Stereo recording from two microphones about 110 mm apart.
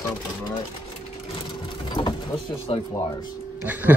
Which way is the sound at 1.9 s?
45° left (ahead or behind).